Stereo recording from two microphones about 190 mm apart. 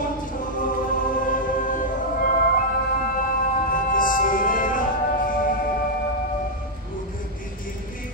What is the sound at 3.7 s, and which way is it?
Music, 45° left (ahead or behind).